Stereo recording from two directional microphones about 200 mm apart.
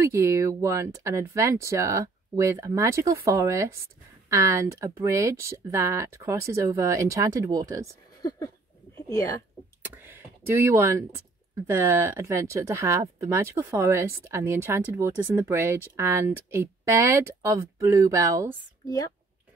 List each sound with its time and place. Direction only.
0.0 s speech: 15° right (ahead or behind)
9.8 s speech: 10° right (ahead or behind)